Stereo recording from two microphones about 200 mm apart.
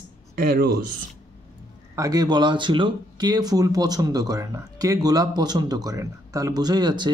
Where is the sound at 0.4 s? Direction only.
50° right (ahead or behind).